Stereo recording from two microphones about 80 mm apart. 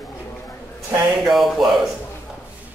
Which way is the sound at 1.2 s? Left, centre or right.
Centre.